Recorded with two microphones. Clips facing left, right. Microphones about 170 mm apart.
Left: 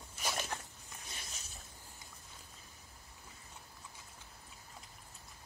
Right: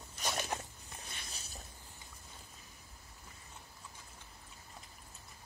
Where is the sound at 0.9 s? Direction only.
35° right (ahead or behind).